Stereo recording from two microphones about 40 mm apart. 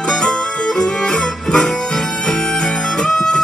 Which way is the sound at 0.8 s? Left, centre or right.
Centre.